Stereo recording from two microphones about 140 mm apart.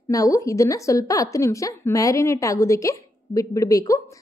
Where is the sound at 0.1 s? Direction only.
25° left (ahead or behind).